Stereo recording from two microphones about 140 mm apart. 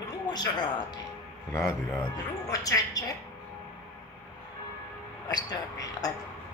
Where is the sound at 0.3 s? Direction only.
30° left (ahead or behind).